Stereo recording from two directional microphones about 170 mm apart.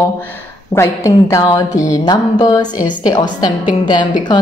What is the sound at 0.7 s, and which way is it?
A woman's voice, 20° left (ahead or behind).